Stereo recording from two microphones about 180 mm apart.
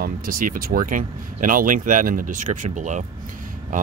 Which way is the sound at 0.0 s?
50° right (ahead or behind).